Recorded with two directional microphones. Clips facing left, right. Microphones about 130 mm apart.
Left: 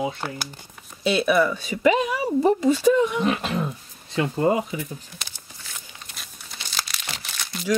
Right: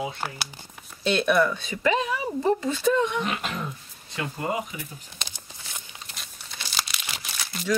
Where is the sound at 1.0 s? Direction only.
5° left (ahead or behind).